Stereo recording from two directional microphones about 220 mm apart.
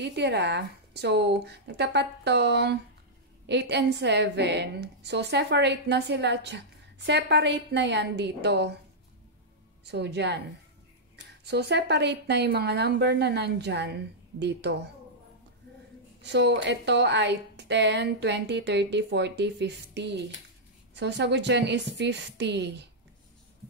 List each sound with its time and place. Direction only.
0.0 s a woman's voice: 50° right (ahead or behind)
9.8 s a woman's voice: 50° right (ahead or behind)
11.4 s a woman's voice: 50° right (ahead or behind)
16.2 s a woman's voice: 50° right (ahead or behind)